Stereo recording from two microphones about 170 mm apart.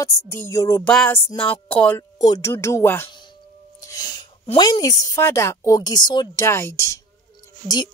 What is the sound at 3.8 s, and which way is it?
Sneeze, 20° left (ahead or behind).